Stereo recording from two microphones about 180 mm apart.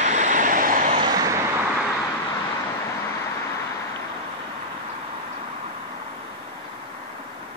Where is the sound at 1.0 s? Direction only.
20° right (ahead or behind).